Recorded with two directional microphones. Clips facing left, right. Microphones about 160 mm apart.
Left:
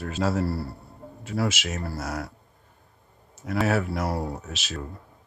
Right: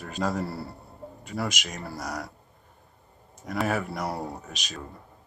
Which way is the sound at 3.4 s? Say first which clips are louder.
Left 3 dB; 5° left (ahead or behind).